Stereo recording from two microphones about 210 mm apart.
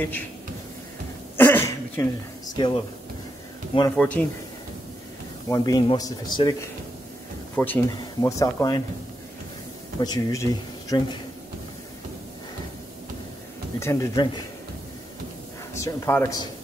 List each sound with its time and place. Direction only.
1.3 s a sound: 10° left (ahead or behind)
3.9 s speech: 5° left (ahead or behind)
5.5 s a man's voice: 20° left (ahead or behind)
7.5 s speech: 10° left (ahead or behind)
9.9 s speech: 20° left (ahead or behind)
13.7 s speech: 15° left (ahead or behind)
15.7 s speech: 15° left (ahead or behind)